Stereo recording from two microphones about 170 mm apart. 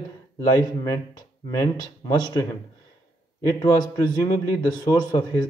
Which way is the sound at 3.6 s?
20° left (ahead or behind).